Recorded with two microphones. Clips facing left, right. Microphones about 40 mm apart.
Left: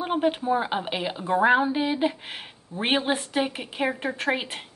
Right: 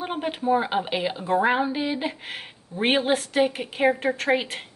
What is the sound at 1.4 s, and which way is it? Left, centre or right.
Speech, centre.